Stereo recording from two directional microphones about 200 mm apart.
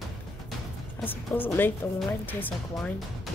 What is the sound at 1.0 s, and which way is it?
A woman's voice, 10° left (ahead or behind).